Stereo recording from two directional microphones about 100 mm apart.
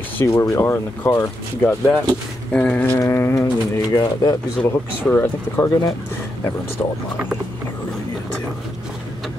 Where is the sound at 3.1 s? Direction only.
25° left (ahead or behind).